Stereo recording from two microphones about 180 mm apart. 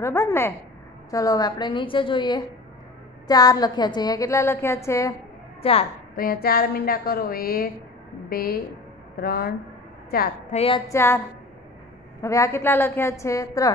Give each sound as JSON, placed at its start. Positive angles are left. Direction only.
{"t": 0.0, "sound": "a woman's voice", "side_deg": 15}
{"t": 5.6, "sound": "a woman's voice", "side_deg": 30}
{"t": 6.1, "sound": "a woman's voice", "side_deg": 55}
{"t": 10.5, "sound": "a sound", "side_deg": 35}
{"t": 10.9, "sound": "a woman's voice", "side_deg": 15}
{"t": 12.2, "sound": "a woman's voice", "side_deg": 15}